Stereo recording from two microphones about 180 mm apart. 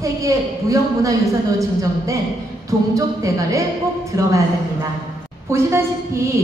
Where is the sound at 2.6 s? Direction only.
20° right (ahead or behind).